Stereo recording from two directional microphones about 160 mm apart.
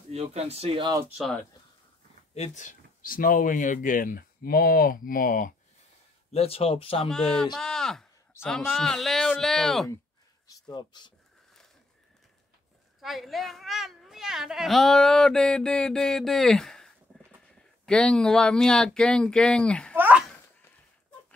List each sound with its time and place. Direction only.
0.1 s speech: 40° right (ahead or behind)
2.3 s speech: 45° left (ahead or behind)
6.3 s speech: 40° left (ahead or behind)
7.1 s speech: 5° left (ahead or behind)
10.4 s speech: 25° left (ahead or behind)
13.0 s speech: centre (ahead or behind)
20.0 s a sound: 10° right (ahead or behind)